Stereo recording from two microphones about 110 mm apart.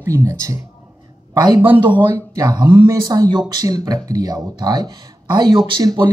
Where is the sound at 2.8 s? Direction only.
35° right (ahead or behind).